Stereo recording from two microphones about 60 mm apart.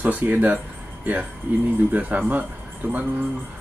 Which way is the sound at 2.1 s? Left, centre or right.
Right.